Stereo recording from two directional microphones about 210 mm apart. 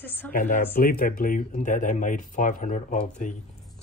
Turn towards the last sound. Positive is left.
turn(degrees=35)  # may be behind; listen again after turning